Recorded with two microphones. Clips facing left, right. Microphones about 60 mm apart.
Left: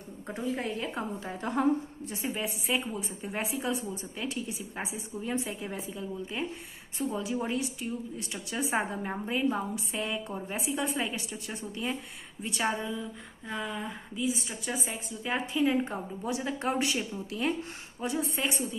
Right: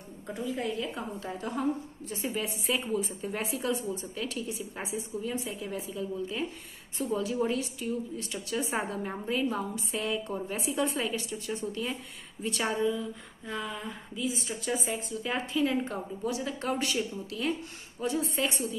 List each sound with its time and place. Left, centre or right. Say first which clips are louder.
0.3 s a woman's voice: even; left
2.0 s a woman's voice: right 2 dB; left
2.4 s speech: even; centre
2.9 s a woman's voice: right 4 dB; centre
5.4 s a woman's voice: even; left
5.9 s a woman's voice: right 3 dB; centre
9.9 s a woman's voice: right 3 dB; centre; by 12.0 s left
12.4 s a woman's voice: right 2 dB; centre